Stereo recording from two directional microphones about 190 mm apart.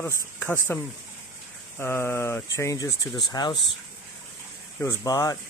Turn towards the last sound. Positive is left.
turn(degrees=20)  # may be behind; listen again after turning